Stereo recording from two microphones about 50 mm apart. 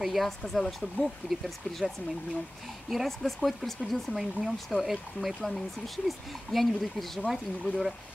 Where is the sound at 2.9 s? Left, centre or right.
Centre.